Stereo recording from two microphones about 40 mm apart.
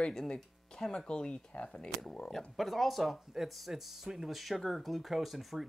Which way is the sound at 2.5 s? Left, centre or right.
Centre.